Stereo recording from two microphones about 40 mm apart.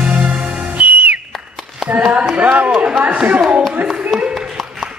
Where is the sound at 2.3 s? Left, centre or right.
Right.